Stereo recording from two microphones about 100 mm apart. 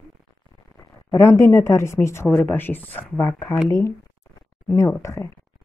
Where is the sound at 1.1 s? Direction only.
25° left (ahead or behind).